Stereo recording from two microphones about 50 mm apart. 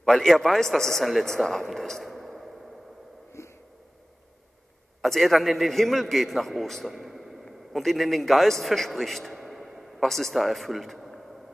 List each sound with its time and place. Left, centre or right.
0.0 s a man's voice: centre
3.4 s wheeze: left
5.0 s a man's voice: centre